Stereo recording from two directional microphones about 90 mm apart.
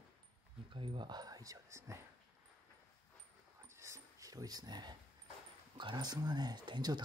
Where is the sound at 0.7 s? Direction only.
70° right (ahead or behind); by 2.0 s 35° right (ahead or behind).